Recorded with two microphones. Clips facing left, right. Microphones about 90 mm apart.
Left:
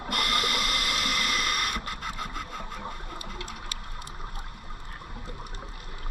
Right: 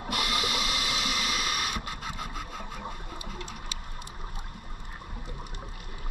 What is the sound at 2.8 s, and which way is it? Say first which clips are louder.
Engine: left 1 dB; 15° right (ahead or behind).